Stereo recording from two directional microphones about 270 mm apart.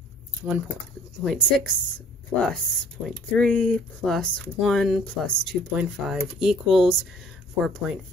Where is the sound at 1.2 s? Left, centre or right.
Centre.